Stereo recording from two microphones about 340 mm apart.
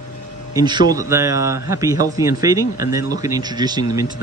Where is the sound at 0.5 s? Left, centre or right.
Centre.